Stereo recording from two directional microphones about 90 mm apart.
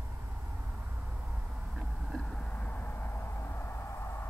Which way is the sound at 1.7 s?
5° left (ahead or behind).